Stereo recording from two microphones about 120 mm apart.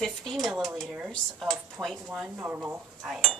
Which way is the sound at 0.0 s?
Centre (ahead or behind).